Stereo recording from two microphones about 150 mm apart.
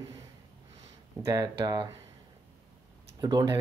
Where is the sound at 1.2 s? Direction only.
25° right (ahead or behind).